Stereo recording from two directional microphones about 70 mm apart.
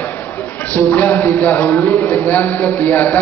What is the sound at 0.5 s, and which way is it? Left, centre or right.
Speech, left.